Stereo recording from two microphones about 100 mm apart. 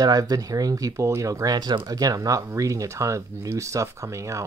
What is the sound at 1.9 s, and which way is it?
Speech, 35° right (ahead or behind).